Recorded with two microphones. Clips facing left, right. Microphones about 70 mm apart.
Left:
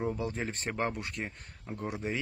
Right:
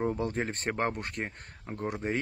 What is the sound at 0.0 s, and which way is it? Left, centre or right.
Speech, right.